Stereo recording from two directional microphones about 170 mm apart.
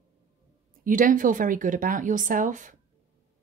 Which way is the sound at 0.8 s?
50° right (ahead or behind).